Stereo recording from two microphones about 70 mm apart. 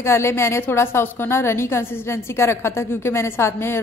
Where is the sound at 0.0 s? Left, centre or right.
Left.